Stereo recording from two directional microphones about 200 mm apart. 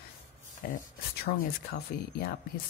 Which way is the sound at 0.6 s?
50° left (ahead or behind).